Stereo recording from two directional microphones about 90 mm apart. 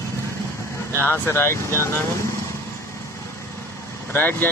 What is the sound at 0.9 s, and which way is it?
Speech, 25° left (ahead or behind).